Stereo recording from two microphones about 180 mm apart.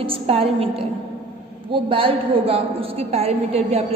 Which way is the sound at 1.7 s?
30° right (ahead or behind).